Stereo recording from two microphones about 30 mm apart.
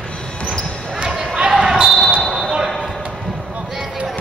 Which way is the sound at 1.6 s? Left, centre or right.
Right.